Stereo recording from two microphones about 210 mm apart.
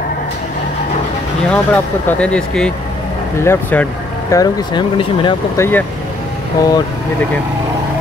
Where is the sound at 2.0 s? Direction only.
5° left (ahead or behind); by 5.7 s 20° left (ahead or behind).